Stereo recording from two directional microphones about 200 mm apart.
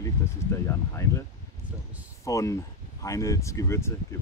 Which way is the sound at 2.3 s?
15° left (ahead or behind).